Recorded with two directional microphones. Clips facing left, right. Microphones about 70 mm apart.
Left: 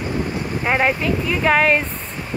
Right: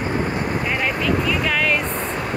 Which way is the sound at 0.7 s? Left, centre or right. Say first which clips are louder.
Left 6 dB; left.